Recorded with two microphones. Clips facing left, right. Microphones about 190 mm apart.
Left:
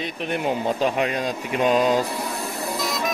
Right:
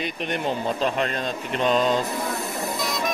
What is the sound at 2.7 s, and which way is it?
Spray, centre (ahead or behind).